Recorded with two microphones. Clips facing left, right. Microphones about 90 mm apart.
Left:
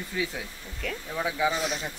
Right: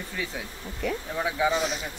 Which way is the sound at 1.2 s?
Centre (ahead or behind).